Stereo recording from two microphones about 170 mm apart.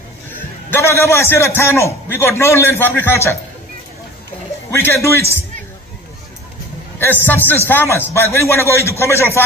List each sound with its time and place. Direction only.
0.7 s a man's voice: 15° left (ahead or behind)
4.6 s a man's voice: 15° left (ahead or behind)
7.0 s a man's voice: 10° left (ahead or behind)